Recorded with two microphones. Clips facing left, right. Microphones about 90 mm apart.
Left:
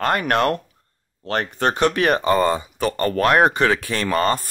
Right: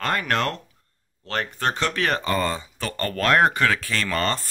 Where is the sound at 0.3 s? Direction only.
20° left (ahead or behind).